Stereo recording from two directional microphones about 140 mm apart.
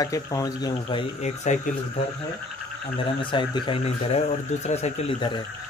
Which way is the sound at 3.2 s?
35° left (ahead or behind).